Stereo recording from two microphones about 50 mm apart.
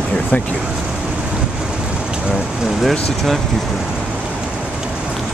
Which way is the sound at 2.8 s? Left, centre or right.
Centre.